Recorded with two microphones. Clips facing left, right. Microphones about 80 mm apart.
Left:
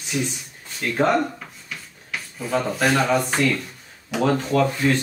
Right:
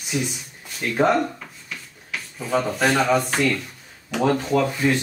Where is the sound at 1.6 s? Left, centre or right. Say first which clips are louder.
Even; centre.